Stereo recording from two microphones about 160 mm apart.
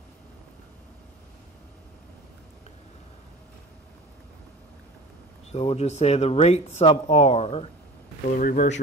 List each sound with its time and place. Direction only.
5.5 s speech: 40° left (ahead or behind)
8.4 s speech: 60° left (ahead or behind)